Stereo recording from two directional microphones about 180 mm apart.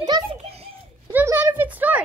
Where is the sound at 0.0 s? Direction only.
25° right (ahead or behind).